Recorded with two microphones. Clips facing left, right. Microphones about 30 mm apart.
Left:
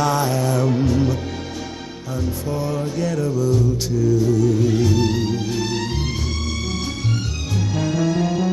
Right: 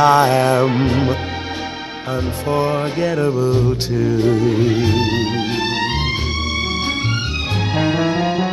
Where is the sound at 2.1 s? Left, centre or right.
Right.